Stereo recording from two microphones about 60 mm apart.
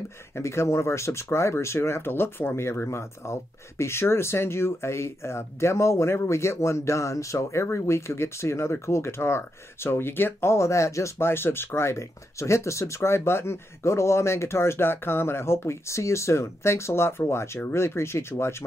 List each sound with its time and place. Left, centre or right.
0.4 s speech: left
11.1 s speech: left